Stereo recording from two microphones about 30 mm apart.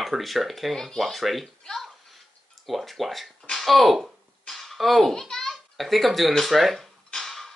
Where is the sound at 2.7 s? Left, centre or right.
Centre.